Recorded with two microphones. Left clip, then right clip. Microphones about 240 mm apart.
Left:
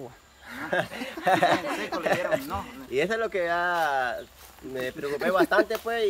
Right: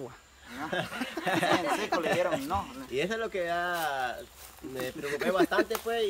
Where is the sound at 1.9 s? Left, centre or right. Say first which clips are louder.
Right 2 dB; centre.